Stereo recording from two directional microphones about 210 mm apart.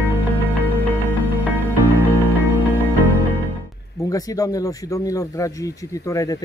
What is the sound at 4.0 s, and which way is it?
Speech, 15° left (ahead or behind).